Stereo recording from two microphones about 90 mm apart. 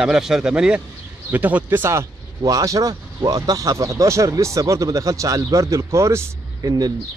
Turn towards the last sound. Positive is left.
turn(degrees=-45)  # may be behind; listen again after turning